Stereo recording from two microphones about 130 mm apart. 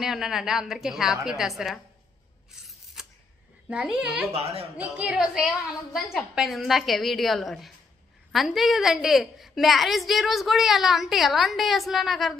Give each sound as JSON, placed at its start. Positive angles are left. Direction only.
{"t": 0.0, "sound": "a woman's voice", "side_deg": -5}
{"t": 3.6, "sound": "a child's voice", "side_deg": -5}
{"t": 4.3, "sound": "speech", "side_deg": -50}
{"t": 4.9, "sound": "a woman's voice", "side_deg": -10}